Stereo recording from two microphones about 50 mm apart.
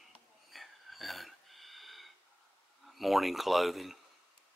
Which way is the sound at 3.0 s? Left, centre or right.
Centre.